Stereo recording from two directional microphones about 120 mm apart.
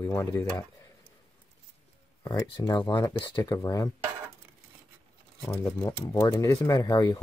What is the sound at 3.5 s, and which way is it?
Speech, 30° left (ahead or behind).